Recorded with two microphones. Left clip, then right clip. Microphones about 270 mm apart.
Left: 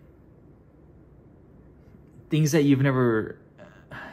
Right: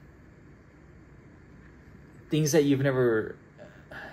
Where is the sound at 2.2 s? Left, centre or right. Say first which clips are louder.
Left 1 dB; left.